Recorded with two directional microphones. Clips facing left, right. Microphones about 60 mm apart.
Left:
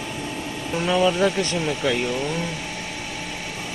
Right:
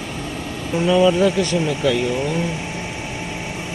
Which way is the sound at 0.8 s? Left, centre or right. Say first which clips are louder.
Right 4 dB; left.